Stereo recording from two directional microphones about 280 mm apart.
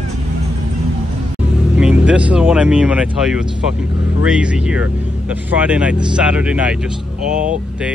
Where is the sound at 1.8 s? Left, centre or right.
Centre.